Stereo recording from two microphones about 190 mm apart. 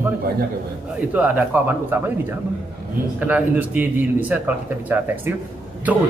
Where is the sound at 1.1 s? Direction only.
10° right (ahead or behind).